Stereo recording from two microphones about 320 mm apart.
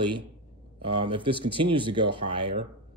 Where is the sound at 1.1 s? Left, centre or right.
Centre.